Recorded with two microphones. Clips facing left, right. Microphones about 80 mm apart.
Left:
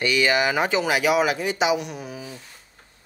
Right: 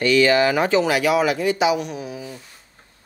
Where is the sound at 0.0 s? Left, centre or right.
Centre.